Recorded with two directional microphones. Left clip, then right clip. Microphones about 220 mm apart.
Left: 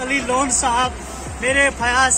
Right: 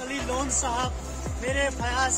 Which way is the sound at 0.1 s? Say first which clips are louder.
Left 10 dB; 20° right (ahead or behind).